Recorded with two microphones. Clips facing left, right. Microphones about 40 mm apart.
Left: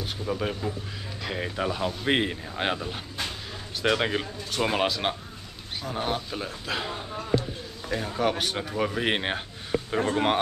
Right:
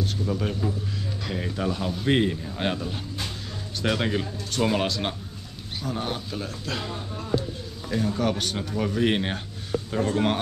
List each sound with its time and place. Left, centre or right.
0.0 s speech: centre